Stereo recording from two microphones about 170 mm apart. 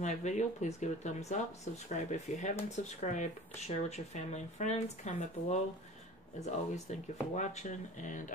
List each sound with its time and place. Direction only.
0.0 s speech: 45° left (ahead or behind)